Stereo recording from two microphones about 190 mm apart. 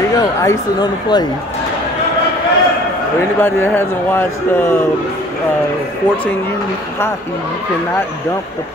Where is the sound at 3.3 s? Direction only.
10° left (ahead or behind).